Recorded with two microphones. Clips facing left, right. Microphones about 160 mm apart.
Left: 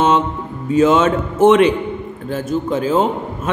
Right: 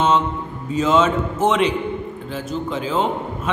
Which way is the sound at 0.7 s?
55° left (ahead or behind).